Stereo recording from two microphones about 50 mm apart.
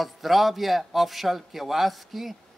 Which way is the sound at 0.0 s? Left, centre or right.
Centre.